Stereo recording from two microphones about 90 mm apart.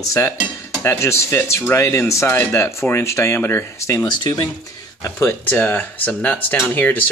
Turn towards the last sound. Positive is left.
turn(degrees=20)  # may be behind; listen again after turning